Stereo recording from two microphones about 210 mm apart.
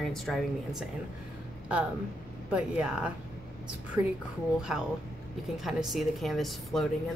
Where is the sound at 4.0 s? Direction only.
20° right (ahead or behind).